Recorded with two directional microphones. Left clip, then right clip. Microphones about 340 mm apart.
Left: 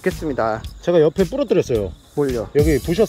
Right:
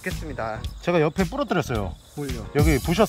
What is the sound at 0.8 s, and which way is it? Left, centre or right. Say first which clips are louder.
Speech: left 7 dB; centre.